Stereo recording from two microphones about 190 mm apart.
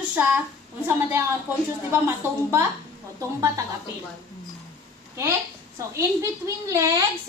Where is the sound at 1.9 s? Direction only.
15° right (ahead or behind).